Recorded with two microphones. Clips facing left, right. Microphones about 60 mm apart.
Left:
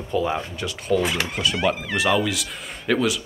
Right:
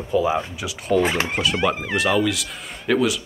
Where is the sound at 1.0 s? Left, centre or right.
Right.